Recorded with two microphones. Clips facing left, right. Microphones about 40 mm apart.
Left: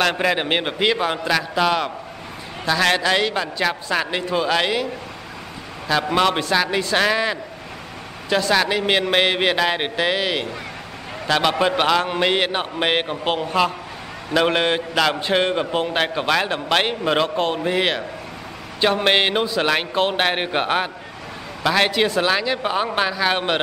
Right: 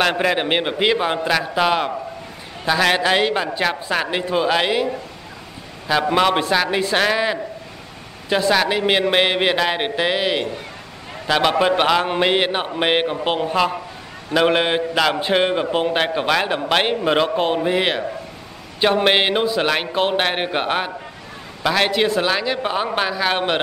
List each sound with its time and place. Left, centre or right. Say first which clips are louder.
0.0 s a man's voice: right 1 dB; centre
3.6 s a man's voice: left 2 dB; centre
5.9 s a man's voice: right 2 dB; centre